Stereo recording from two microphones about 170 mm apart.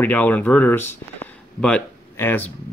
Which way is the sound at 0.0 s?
10° left (ahead or behind).